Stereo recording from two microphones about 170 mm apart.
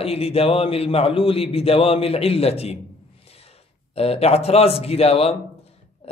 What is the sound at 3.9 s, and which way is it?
A man's voice, 35° left (ahead or behind).